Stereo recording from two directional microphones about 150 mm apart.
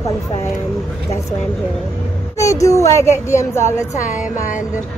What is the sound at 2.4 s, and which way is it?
A woman's voice, 20° left (ahead or behind).